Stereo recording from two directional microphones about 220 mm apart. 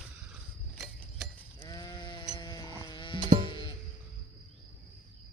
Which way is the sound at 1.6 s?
15° left (ahead or behind).